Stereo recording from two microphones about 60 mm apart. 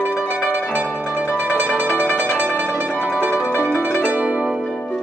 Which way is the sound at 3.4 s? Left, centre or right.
Right.